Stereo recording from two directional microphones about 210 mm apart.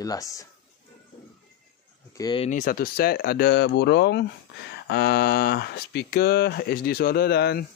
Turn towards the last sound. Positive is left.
turn(degrees=50)  # may be behind; listen again after turning